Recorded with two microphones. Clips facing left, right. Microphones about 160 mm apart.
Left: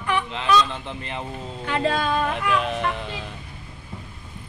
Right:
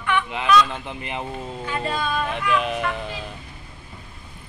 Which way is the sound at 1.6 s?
80° left.